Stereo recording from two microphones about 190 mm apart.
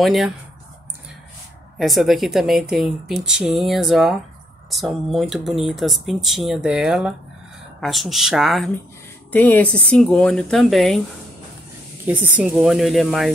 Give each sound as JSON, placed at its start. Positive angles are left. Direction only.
{"t": 0.0, "sound": "speech", "side_deg": 0}
{"t": 1.8, "sound": "speech", "side_deg": 0}
{"t": 12.1, "sound": "speech", "side_deg": -10}